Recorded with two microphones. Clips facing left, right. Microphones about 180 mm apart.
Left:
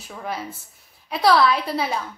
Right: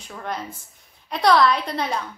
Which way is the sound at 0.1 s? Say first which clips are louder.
Even; 5° left (ahead or behind).